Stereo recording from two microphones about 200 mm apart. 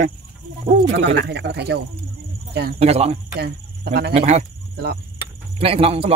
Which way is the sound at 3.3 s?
55° right (ahead or behind).